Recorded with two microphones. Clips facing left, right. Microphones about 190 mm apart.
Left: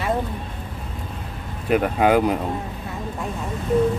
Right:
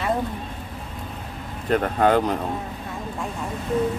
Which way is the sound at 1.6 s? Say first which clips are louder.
Left 1 dB; 10° left (ahead or behind).